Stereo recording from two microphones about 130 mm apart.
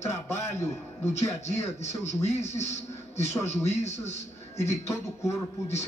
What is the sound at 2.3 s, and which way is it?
Speech, 60° left (ahead or behind).